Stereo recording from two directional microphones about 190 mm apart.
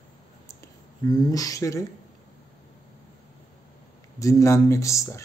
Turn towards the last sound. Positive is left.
turn(degrees=15)  # may be behind; listen again after turning